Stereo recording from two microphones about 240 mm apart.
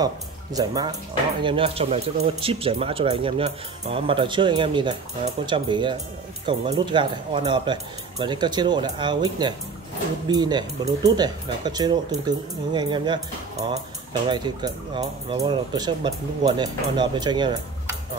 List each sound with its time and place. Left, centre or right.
0.0 s speech: centre